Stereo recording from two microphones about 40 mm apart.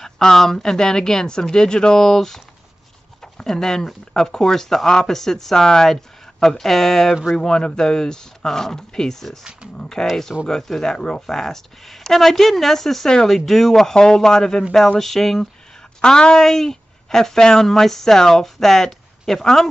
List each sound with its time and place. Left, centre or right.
0.0 s speech: centre
7.3 s speech: centre
9.4 s speech: right
9.8 s speech: centre
16.0 s a woman's voice: centre
16.3 s speech: centre